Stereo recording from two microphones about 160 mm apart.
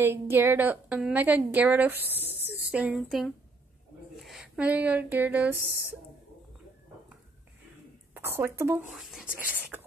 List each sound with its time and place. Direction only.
0.0 s a woman's voice: 15° right (ahead or behind)
2.1 s a sound: 10° right (ahead or behind)
2.7 s speech: 5° right (ahead or behind)
8.1 s speech: 15° right (ahead or behind)
8.9 s a woman's voice: 5° right (ahead or behind)